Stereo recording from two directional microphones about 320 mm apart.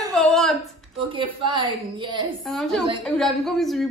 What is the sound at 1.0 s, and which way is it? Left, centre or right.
Speech, centre.